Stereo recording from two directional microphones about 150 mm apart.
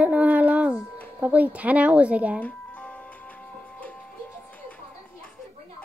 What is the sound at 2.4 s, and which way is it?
Music, 10° left (ahead or behind).